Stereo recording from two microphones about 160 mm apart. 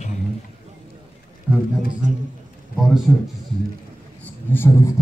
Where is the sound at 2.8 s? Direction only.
Centre (ahead or behind).